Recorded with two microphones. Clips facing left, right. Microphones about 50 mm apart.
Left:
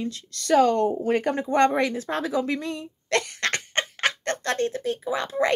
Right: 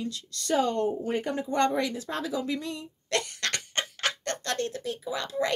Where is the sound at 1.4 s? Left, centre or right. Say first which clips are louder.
Left 4 dB; left.